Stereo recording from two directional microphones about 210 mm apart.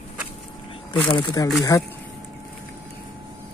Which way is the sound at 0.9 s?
25° left (ahead or behind).